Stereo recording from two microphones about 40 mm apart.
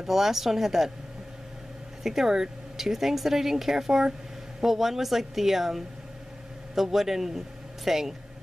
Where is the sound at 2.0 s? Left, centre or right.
Centre.